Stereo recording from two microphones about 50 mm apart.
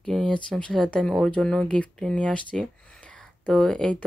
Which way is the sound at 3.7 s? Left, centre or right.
Left.